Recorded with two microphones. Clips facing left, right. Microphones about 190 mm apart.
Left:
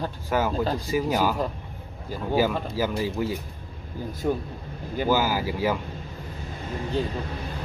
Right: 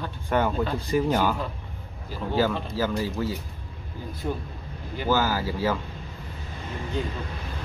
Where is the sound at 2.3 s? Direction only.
10° left (ahead or behind).